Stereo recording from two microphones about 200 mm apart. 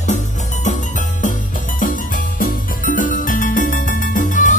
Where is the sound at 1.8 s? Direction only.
45° left (ahead or behind).